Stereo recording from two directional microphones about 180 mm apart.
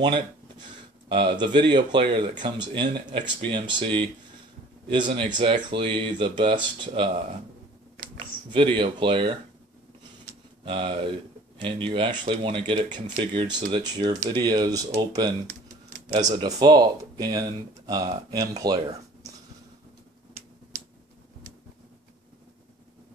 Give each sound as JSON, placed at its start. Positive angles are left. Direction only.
{"t": 1.0, "sound": "speech", "side_deg": -30}
{"t": 8.5, "sound": "speech", "side_deg": -25}
{"t": 10.6, "sound": "speech", "side_deg": -30}